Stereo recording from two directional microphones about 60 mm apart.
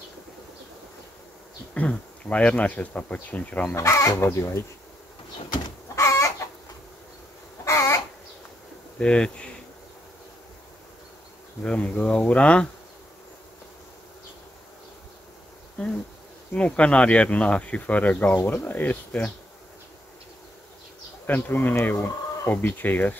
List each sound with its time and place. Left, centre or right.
1.7 s speech: left
3.7 s speech: left
5.9 s chicken: left
7.6 s crow: left
8.9 s speech: centre
11.6 s speech: left
16.5 s speech: centre
21.3 s speech: left